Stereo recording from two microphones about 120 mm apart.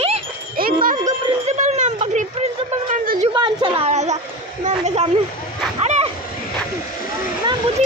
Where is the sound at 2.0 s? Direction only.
80° right.